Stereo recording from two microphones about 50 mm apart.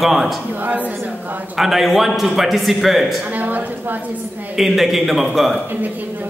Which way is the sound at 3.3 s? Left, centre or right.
Right.